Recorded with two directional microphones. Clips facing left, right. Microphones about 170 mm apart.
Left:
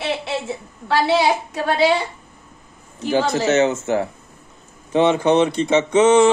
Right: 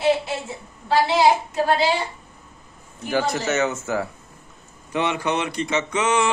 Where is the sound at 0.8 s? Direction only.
65° left (ahead or behind).